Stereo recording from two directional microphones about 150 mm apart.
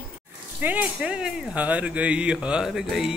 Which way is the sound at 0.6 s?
10° right (ahead or behind).